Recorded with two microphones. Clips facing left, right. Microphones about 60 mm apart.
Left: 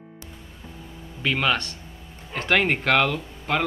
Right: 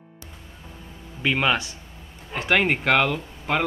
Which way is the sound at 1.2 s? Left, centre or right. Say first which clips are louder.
Right 1 dB; centre.